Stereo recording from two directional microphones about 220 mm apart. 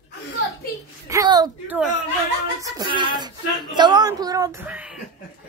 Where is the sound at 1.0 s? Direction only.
15° right (ahead or behind).